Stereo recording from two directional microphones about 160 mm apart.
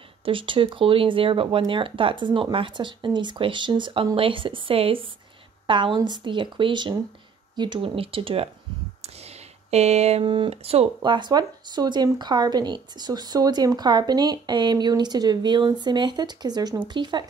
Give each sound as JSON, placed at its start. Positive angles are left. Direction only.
{"t": 0.2, "sound": "speech", "side_deg": -30}
{"t": 9.7, "sound": "speech", "side_deg": -40}
{"t": 11.0, "sound": "speech", "side_deg": -30}